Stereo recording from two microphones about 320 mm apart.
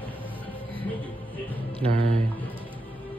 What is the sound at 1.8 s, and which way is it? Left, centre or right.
Speech, centre.